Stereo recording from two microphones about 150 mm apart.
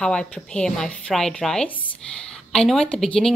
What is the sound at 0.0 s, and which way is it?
Speech, 5° left (ahead or behind).